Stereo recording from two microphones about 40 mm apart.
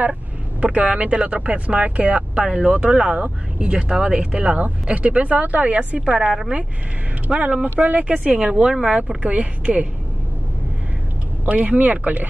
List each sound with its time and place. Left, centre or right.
0.7 s speech: right; by 3.2 s centre
3.2 s speech: right
4.9 s a woman's voice: right; by 6.5 s centre
7.2 s a woman's voice: right
8.3 s speech: centre
9.2 s a woman's voice: right
11.4 s a woman's voice: right